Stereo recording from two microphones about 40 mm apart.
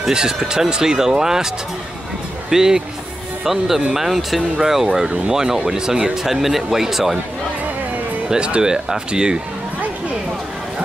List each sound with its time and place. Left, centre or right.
0.1 s speech: centre
2.5 s speech: centre
8.3 s speech: right